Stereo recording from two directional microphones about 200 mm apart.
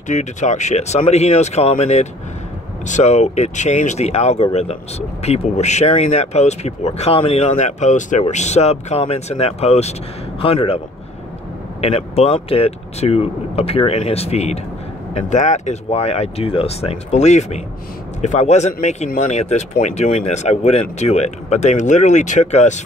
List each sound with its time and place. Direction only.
0.1 s a man's voice: 35° left (ahead or behind)
11.8 s speech: 30° left (ahead or behind)